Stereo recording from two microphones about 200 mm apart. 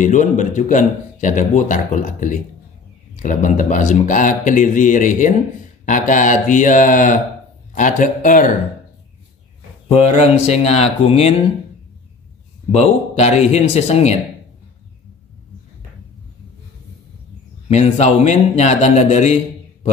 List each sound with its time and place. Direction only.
0.0 s speech: 40° left (ahead or behind)
9.8 s speech: 30° left (ahead or behind)
12.7 s speech: 35° left (ahead or behind)
17.6 s speech: 35° left (ahead or behind)